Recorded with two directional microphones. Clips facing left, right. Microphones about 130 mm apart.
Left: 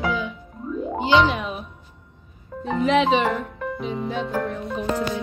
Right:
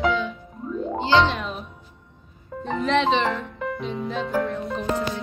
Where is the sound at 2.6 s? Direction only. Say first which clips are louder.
Left 2 dB; 5° left (ahead or behind).